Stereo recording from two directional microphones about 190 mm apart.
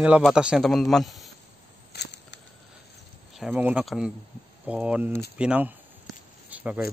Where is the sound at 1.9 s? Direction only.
65° left (ahead or behind).